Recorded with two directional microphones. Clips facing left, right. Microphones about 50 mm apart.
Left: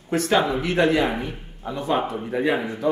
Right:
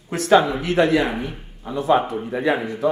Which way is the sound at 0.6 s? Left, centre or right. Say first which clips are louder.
Right 2 dB; centre.